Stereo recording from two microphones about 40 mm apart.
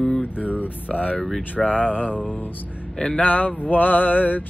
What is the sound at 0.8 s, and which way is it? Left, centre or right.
Speech, left.